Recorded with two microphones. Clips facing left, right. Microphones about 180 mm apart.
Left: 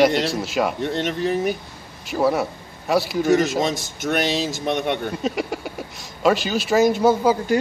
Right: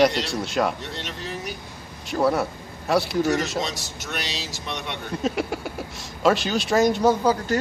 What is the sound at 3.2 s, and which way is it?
Speech, 50° left (ahead or behind).